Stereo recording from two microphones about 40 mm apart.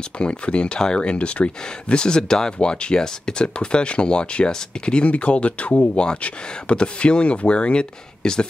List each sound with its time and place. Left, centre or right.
0.2 s speech: left
5.9 s speech: left